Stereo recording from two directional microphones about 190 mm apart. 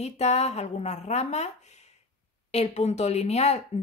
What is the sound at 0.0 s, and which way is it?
Speech, 35° left (ahead or behind).